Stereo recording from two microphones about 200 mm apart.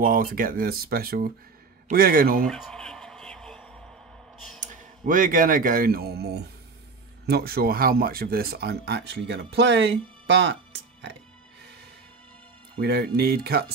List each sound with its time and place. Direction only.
0.0 s speech: 45° right (ahead or behind)
2.4 s music: centre (ahead or behind)
4.6 s speech: 45° right (ahead or behind); by 11.1 s 65° right (ahead or behind)
12.8 s speech: 55° right (ahead or behind)